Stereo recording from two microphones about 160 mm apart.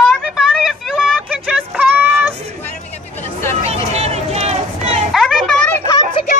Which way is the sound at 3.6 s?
40° right (ahead or behind).